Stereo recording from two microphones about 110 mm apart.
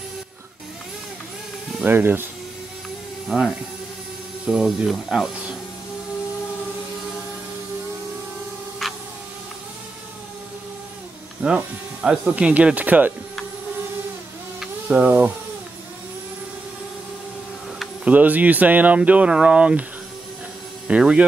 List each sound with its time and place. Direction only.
1.8 s speech: 20° right (ahead or behind)
3.3 s speech: 5° right (ahead or behind)
8.8 s a sound: centre (ahead or behind)
11.4 s speech: 10° right (ahead or behind)
14.9 s speech: 15° right (ahead or behind)
18.0 s speech: 15° right (ahead or behind)
20.9 s speech: 10° right (ahead or behind)